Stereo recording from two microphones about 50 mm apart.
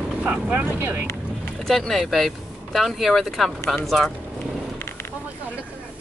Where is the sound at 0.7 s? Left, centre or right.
Right.